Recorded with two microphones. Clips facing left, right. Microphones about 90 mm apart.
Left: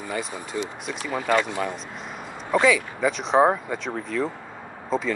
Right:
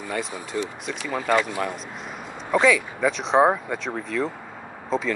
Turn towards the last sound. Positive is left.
turn(degrees=0)  # may be behind; listen again after turning